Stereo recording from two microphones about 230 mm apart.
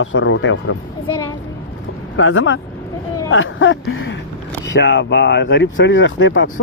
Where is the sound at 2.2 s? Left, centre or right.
Left.